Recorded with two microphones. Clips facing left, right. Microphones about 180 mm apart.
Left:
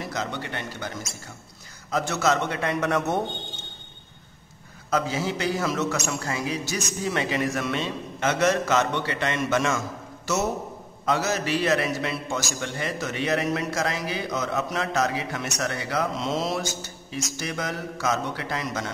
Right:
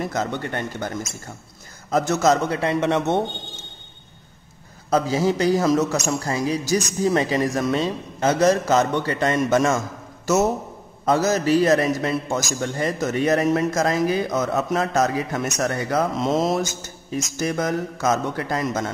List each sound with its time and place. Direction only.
0.0 s a man's voice: 50° right (ahead or behind); by 3.3 s 25° right (ahead or behind)
4.9 s a man's voice: 40° right (ahead or behind)